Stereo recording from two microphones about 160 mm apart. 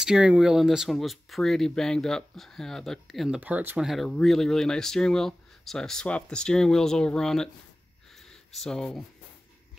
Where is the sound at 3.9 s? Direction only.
Centre (ahead or behind).